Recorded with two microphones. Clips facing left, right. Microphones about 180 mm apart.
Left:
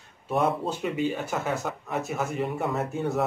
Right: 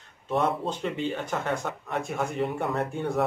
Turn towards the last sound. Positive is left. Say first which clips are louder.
# even
turn(degrees=5)  # may be behind; listen again after turning